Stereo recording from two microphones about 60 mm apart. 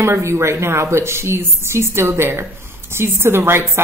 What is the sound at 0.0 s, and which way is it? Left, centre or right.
Speech, right.